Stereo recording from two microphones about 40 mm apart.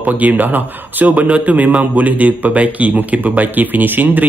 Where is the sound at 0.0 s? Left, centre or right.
Right.